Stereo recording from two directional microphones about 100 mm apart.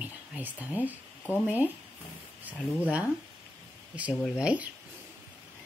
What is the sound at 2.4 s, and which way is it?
Speech, 15° right (ahead or behind).